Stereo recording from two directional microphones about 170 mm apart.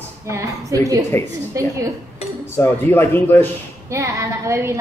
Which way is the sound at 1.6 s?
20° right (ahead or behind).